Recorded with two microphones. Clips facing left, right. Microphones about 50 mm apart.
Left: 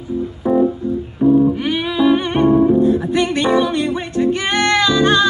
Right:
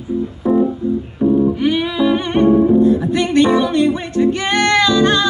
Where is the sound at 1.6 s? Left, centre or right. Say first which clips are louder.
Right 1 dB; centre.